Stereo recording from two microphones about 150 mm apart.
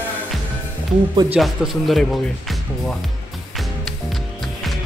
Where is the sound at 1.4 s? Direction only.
Centre (ahead or behind).